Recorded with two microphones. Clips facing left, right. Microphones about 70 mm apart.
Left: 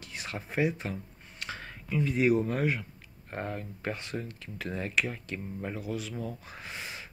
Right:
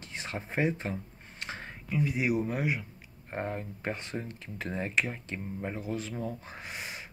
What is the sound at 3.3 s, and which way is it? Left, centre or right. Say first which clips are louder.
Speech: right 1 dB; right.